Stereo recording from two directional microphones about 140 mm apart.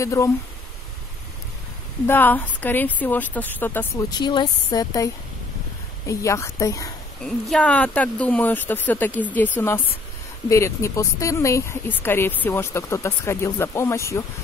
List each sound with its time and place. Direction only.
0.0 s speech: 20° left (ahead or behind)
2.0 s speech: 15° left (ahead or behind)
4.2 s speech: 30° left (ahead or behind)
7.2 s speech: 5° left (ahead or behind); by 14.2 s 20° left (ahead or behind)